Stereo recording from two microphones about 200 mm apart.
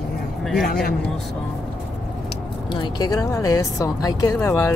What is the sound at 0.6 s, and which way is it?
Speech, 45° left (ahead or behind).